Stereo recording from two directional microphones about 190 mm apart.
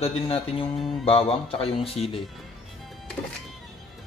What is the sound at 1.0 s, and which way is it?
Speech, 30° left (ahead or behind).